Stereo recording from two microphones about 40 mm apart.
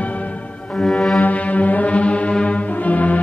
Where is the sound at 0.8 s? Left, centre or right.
Centre.